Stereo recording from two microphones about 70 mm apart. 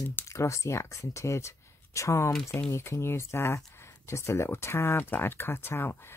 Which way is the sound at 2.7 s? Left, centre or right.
Left.